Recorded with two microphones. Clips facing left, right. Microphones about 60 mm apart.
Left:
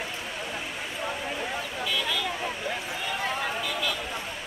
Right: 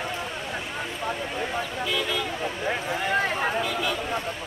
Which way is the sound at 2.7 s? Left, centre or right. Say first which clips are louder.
Right 6 dB; right.